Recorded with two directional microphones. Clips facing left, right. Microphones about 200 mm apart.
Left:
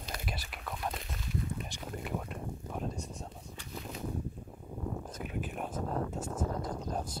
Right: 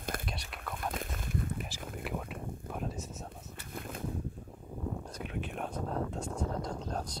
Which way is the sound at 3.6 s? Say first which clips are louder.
Right 1 dB; 55° right (ahead or behind).